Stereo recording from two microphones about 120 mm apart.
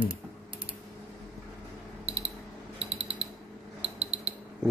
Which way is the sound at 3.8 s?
60° right (ahead or behind).